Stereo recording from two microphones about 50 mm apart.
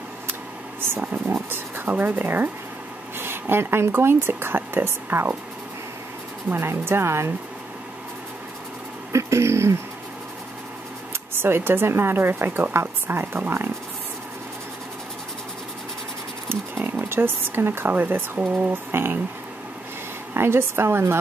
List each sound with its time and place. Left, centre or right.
0.9 s speech: right
6.5 s speech: right
9.1 s a sound: right
11.4 s speech: right
16.4 s a sound: right
17.1 s speech: right
20.3 s speech: right